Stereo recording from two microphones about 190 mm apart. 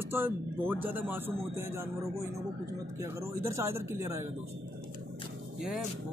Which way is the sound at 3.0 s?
15° right (ahead or behind).